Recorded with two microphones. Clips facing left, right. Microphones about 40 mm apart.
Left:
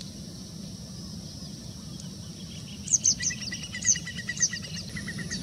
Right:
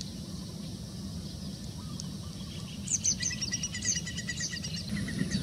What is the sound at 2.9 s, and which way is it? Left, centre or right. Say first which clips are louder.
Bird: left 5 dB; right.